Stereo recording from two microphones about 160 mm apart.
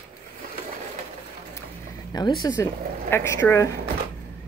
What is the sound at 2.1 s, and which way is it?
Speech, 25° left (ahead or behind).